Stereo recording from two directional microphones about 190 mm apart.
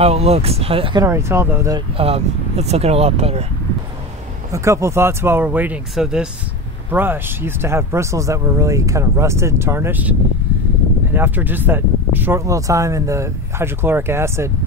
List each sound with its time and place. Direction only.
0.0 s speech: 35° right (ahead or behind)
1.0 s speech: 15° right (ahead or behind)
2.0 s speech: 30° right (ahead or behind)
4.5 s speech: 15° right (ahead or behind)
11.1 s speech: 10° right (ahead or behind)